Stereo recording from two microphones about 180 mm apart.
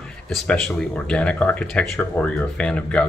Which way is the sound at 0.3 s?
5° left (ahead or behind).